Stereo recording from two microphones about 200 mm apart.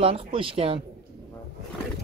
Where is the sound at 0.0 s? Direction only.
25° right (ahead or behind).